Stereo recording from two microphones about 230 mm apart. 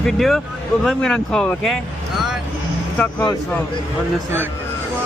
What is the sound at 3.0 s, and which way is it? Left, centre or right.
Speech, centre.